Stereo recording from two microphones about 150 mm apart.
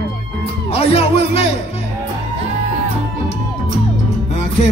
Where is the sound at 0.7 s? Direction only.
40° left (ahead or behind).